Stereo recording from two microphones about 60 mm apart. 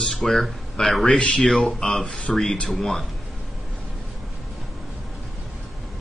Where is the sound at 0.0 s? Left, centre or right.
Centre.